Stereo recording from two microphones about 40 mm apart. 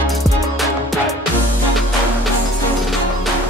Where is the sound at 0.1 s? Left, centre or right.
Centre.